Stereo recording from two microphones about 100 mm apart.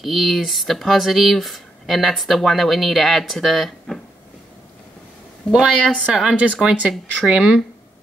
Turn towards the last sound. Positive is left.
turn(degrees=-10)  # may be behind; listen again after turning